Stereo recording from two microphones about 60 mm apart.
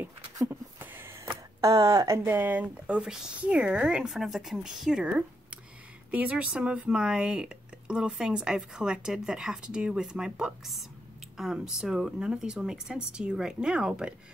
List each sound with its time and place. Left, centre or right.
0.5 s a sound: right
1.6 s speech: right
2.2 s speech: right
2.9 s speech: centre
3.3 s speech: right
4.1 s speech: centre
5.0 s a sound: centre
6.1 s speech: right